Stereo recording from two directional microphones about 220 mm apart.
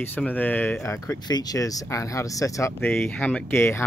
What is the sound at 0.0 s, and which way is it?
Speech, 10° left (ahead or behind).